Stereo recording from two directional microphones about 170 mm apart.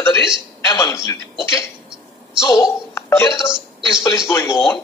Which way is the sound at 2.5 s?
25° left (ahead or behind).